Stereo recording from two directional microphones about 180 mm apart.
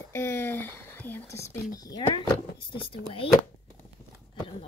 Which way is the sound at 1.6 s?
20° left (ahead or behind).